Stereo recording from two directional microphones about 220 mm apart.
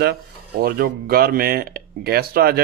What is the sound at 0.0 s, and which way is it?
Speech, 45° right (ahead or behind).